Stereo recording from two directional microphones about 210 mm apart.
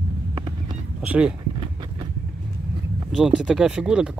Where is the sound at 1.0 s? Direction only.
5° right (ahead or behind).